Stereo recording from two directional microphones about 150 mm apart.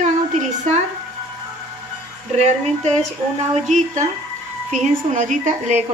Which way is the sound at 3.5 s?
50° right (ahead or behind).